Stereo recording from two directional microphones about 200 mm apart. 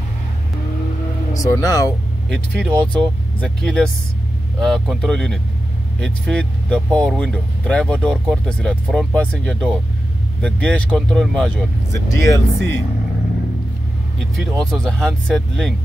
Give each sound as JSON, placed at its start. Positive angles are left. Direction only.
{"t": 1.3, "sound": "speech", "side_deg": 15}
{"t": 2.2, "sound": "speech", "side_deg": 5}
{"t": 14.3, "sound": "speech", "side_deg": 0}